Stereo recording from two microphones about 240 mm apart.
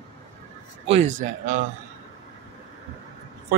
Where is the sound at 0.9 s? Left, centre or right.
Right.